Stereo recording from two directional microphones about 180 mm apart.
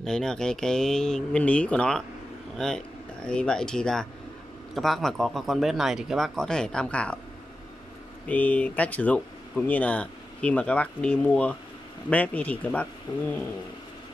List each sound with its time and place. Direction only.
0.0 s speech: 5° left (ahead or behind)
8.3 s speech: 10° left (ahead or behind)
13.1 s a sound: 20° left (ahead or behind)